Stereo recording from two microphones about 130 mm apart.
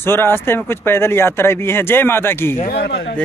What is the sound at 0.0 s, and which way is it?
Speech, 15° left (ahead or behind).